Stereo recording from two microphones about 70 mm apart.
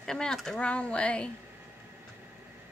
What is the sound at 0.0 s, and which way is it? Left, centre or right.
Speech, centre.